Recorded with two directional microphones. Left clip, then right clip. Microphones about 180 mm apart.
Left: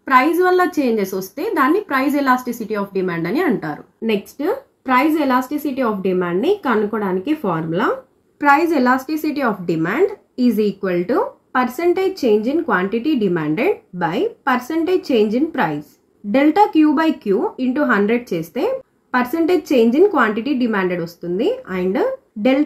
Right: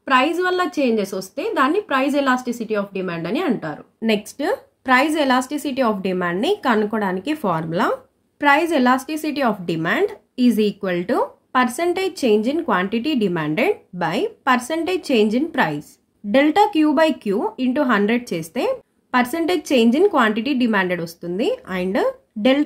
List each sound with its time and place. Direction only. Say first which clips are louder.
0.6 s a woman's voice: left 3 dB; 15° right (ahead or behind)
4.0 s a woman's voice: even; 30° right (ahead or behind)